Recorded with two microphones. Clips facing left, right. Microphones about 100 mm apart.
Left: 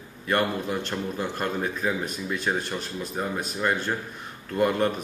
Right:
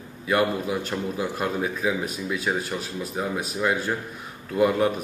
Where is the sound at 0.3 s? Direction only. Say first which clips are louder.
Right 2 dB; 5° right (ahead or behind).